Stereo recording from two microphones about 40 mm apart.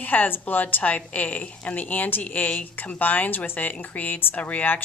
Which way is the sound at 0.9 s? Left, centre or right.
Left.